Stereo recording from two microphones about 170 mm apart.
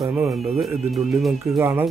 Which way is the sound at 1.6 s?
15° right (ahead or behind).